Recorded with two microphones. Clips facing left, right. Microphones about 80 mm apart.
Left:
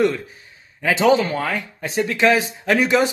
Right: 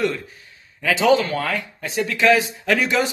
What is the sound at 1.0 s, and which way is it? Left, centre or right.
Speech, left.